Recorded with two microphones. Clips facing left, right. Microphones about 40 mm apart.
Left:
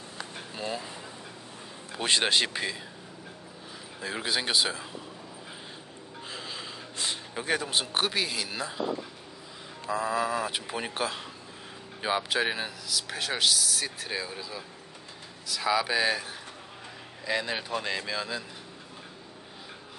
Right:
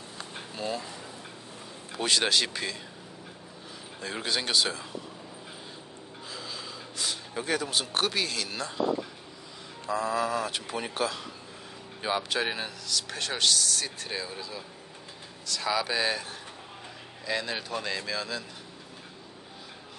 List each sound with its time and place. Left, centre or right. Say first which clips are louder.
0.6 s speech: right 1 dB; centre
2.0 s a man's voice: left 1 dB; left
4.0 s speech: left 1 dB; centre
6.3 s gasp: even; left
7.3 s speech: even; centre
9.8 s speech: even; centre